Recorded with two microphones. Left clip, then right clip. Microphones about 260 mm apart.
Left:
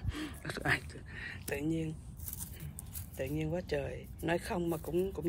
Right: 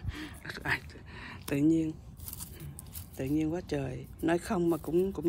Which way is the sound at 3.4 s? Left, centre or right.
Right.